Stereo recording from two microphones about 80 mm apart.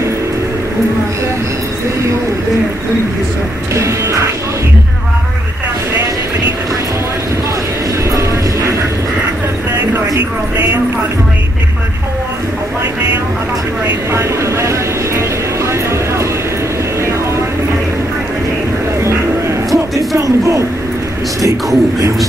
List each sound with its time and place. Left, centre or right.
3.7 s music: right
14.1 s vehicle: right
19.0 s a sound: right
21.4 s speech: right